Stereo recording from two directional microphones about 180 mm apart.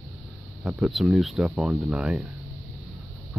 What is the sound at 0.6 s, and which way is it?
Speech, 5° right (ahead or behind).